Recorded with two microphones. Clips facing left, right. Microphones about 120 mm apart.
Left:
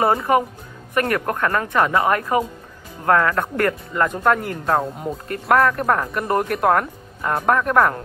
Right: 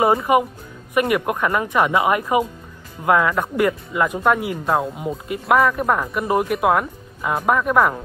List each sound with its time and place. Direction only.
0.0 s speech: 10° right (ahead or behind)